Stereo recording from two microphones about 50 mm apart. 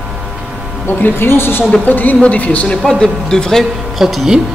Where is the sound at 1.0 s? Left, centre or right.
Left.